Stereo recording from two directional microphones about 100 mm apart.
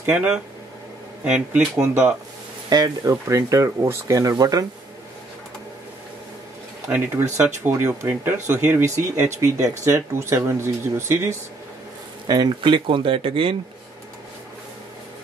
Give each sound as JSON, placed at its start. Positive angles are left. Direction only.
{"t": 0.0, "sound": "speech", "side_deg": -10}
{"t": 2.7, "sound": "speech", "side_deg": -35}
{"t": 6.9, "sound": "speech", "side_deg": -20}
{"t": 12.3, "sound": "speech", "side_deg": -40}
{"t": 12.7, "sound": "speech", "side_deg": -60}